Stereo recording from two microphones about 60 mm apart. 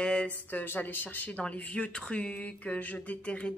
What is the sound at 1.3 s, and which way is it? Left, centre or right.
Speech, centre.